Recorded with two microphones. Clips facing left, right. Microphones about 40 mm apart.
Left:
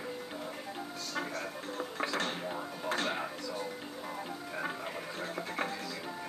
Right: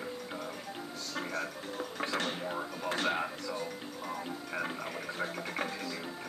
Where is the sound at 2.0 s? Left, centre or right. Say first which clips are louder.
Right 1 dB; right.